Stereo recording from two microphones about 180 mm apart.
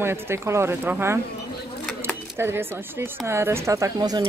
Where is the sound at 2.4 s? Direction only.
15° right (ahead or behind).